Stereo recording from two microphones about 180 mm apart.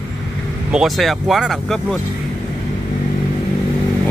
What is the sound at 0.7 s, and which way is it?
Speech, centre (ahead or behind).